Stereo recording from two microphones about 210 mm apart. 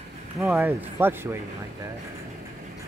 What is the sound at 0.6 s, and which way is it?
Speech, 10° right (ahead or behind).